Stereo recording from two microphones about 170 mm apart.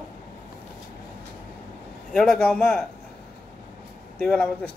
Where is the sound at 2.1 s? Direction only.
5° left (ahead or behind).